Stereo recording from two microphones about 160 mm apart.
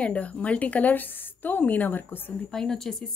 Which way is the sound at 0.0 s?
10° left (ahead or behind).